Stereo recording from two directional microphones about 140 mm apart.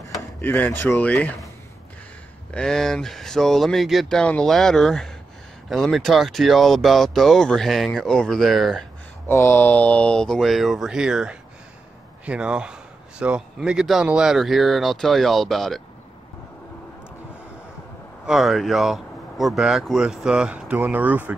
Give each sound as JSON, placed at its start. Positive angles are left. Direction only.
{"t": 0.4, "sound": "speech", "side_deg": 15}
{"t": 2.5, "sound": "speech", "side_deg": 5}
{"t": 9.3, "sound": "speech", "side_deg": 20}
{"t": 18.2, "sound": "speech", "side_deg": 0}